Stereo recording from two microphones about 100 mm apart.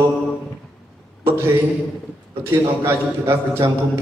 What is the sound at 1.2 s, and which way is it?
A man's voice, 25° right (ahead or behind).